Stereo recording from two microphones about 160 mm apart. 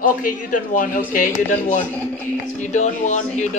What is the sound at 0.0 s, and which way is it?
A man's voice, 55° left (ahead or behind).